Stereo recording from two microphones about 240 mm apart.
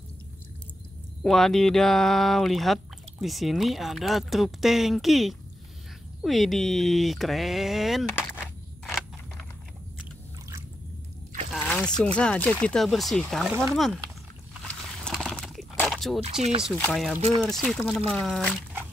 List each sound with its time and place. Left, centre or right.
1.2 s speech: centre
11.5 s speech: centre
15.0 s a sound: centre
16.2 s speech: right
16.6 s speech: centre